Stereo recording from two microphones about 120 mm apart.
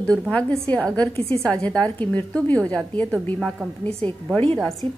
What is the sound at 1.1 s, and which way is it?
Speech, 55° right (ahead or behind).